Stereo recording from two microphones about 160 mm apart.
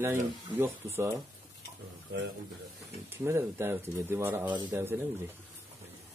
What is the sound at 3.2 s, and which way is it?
Speech, 15° right (ahead or behind).